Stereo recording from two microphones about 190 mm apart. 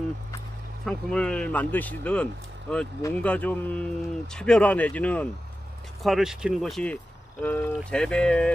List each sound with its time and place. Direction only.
0.8 s speech: 5° left (ahead or behind)